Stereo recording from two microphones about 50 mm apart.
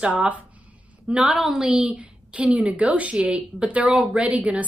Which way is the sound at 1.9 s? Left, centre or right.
Right.